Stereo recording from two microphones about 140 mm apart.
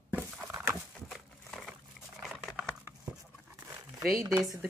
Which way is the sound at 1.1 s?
Centre (ahead or behind).